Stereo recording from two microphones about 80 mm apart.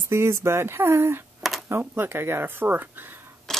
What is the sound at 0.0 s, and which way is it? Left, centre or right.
Speech, right.